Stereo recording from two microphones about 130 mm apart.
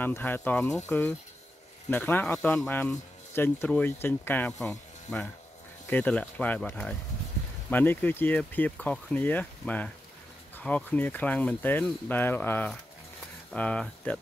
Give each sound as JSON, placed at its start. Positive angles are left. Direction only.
{"t": 0.0, "sound": "speech", "side_deg": 15}